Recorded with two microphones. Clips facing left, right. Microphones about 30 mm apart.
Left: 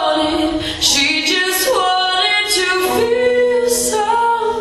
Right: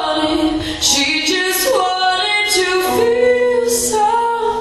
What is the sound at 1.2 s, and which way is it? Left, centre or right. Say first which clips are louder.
A capella: even; left.